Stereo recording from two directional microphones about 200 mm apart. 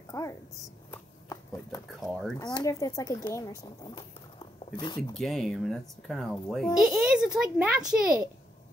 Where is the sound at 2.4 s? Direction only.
20° left (ahead or behind).